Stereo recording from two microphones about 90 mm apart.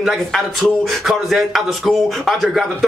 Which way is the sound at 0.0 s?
Centre (ahead or behind).